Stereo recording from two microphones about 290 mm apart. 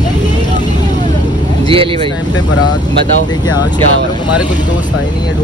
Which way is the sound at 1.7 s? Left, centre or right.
Centre.